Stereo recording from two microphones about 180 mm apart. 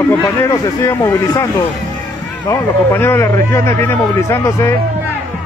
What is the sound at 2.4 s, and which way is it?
Speech, 15° left (ahead or behind).